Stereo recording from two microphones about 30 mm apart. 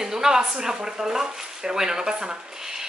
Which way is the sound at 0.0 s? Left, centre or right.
Centre.